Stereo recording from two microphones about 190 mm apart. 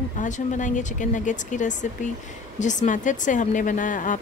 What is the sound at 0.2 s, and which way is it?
Speech, 40° left (ahead or behind).